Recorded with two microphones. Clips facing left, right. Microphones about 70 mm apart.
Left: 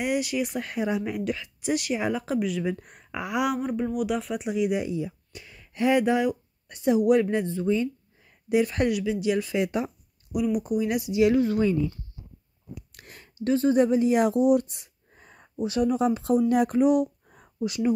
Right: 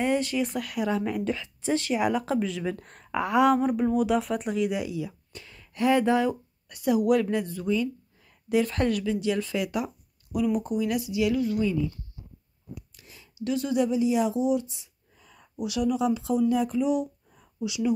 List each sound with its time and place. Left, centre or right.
0.0 s speech: centre
0.6 s speech: left
0.9 s speech: centre
3.6 s speech: centre
4.6 s speech: left
5.3 s a woman's voice: centre
8.5 s speech: centre
10.3 s speech: centre
10.8 s speech: left
12.9 s a sound: left
13.5 s speech: left
17.6 s speech: left